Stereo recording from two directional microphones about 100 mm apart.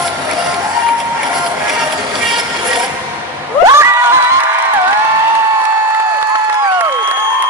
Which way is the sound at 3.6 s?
30° right (ahead or behind).